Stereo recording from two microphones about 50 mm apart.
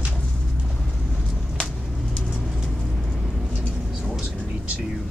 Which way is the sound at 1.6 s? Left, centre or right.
Centre.